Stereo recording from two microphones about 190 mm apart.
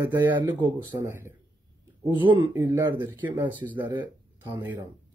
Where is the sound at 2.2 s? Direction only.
20° right (ahead or behind).